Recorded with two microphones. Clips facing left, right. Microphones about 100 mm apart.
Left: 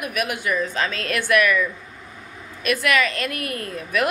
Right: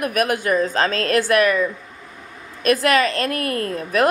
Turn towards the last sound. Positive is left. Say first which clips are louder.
# right 5 dB
turn(degrees=-40)  # may be behind; listen again after turning